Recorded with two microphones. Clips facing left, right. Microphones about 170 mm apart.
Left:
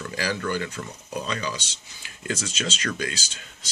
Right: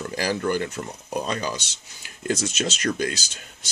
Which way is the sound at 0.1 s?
40° right (ahead or behind).